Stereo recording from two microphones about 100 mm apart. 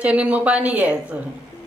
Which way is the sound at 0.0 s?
15° right (ahead or behind).